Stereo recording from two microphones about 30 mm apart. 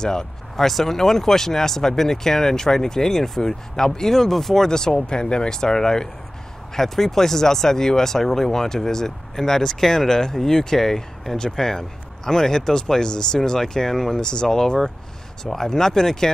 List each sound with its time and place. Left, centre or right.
0.0 s speech: left
0.6 s speech: centre
4.6 s speech: left
6.7 s speech: centre